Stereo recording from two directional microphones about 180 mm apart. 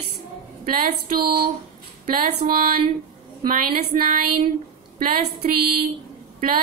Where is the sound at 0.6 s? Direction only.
55° right (ahead or behind).